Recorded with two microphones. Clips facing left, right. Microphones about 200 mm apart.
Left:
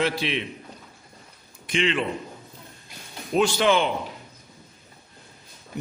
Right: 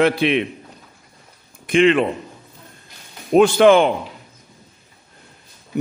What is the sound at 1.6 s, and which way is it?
Speech, 55° right (ahead or behind).